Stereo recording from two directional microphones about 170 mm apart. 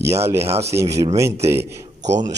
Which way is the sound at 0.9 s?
20° right (ahead or behind).